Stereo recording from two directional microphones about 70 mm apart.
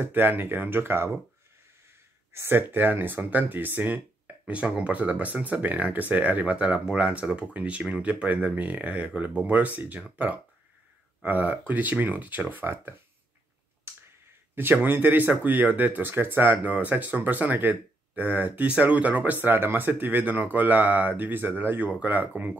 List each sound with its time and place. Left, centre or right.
0.0 s speech: right
2.3 s speech: right
14.5 s speech: right